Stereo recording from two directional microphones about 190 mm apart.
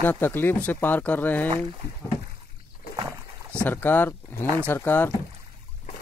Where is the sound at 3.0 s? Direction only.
15° right (ahead or behind).